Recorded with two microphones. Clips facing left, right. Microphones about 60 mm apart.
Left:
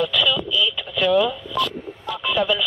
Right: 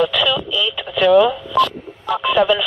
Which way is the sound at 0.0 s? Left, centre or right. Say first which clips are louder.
Right 4 dB; right.